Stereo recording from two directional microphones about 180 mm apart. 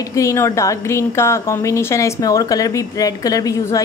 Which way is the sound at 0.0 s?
15° left (ahead or behind).